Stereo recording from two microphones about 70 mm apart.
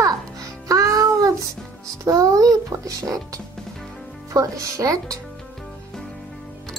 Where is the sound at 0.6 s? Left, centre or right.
Right.